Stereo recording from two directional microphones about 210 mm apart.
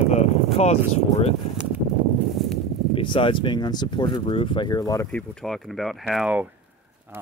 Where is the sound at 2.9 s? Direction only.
25° left (ahead or behind).